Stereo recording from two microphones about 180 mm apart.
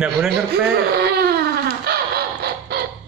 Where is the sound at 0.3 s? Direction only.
60° right (ahead or behind).